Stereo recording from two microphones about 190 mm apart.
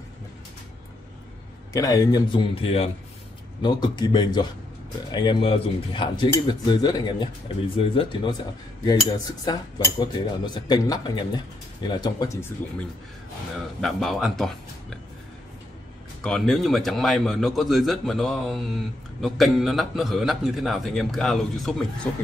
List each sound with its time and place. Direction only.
1.7 s cutlery: 20° left (ahead or behind)
13.7 s a man's voice: centre (ahead or behind)
16.2 s a man's voice: centre (ahead or behind)